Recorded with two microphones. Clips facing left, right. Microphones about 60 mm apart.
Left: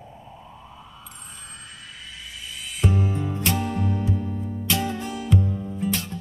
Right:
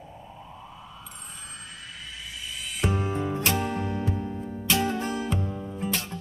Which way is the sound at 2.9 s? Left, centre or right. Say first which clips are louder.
Left 1 dB; right.